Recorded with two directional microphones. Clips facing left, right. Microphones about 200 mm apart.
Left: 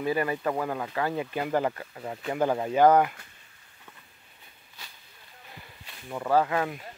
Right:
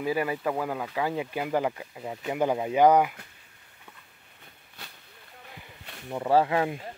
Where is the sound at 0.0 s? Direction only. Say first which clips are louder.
Even; 10° right (ahead or behind).